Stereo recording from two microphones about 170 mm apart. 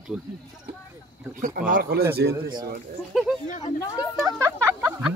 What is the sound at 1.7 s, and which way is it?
Speech, 70° right (ahead or behind).